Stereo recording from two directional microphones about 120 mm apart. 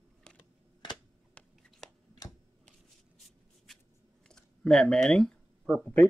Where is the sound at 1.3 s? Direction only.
5° left (ahead or behind).